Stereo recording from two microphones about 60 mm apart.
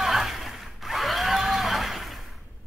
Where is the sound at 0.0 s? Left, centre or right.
Centre.